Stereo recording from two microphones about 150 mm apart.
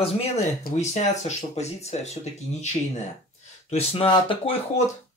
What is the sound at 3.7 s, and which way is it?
Speech, 35° left (ahead or behind).